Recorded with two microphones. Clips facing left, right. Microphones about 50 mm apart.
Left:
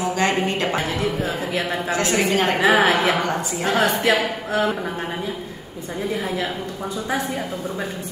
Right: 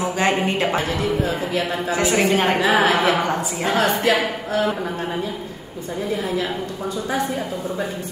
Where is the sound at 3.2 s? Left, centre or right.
Centre.